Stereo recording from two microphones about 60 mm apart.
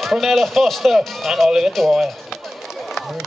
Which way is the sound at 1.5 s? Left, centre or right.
Centre.